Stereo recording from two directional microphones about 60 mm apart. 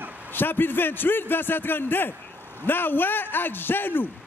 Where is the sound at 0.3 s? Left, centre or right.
Left.